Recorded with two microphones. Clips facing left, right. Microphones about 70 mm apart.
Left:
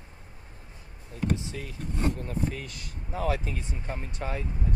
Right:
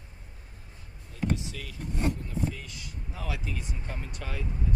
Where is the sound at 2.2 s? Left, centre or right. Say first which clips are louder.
Left 2 dB; left.